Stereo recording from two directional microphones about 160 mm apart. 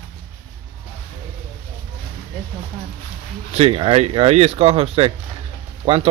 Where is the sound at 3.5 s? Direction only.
40° right (ahead or behind).